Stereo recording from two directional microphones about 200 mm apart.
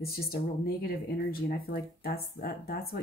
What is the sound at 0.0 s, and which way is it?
Speech, 50° left (ahead or behind).